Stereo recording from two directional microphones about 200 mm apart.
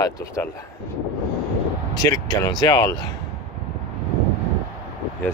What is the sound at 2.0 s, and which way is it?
Speech, 15° left (ahead or behind).